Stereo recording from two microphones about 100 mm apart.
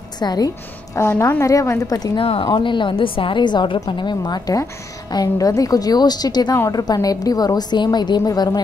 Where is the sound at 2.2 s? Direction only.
65° left (ahead or behind); by 8.6 s 40° left (ahead or behind).